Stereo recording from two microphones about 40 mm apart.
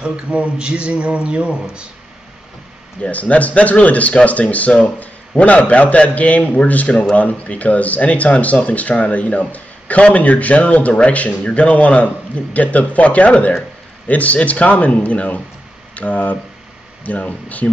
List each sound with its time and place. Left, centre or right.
0.0 s speech: right
3.0 s a man's voice: left